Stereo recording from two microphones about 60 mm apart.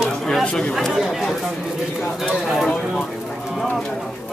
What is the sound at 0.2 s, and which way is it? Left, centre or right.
Chatter, centre.